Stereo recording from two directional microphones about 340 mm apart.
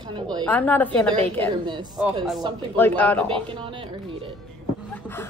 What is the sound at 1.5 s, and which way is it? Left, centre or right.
Speech, centre.